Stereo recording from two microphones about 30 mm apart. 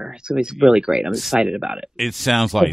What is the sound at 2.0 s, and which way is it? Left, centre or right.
Speech, centre.